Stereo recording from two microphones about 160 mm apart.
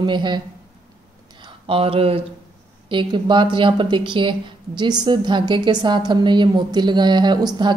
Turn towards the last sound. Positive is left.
turn(degrees=-30)  # may be behind; listen again after turning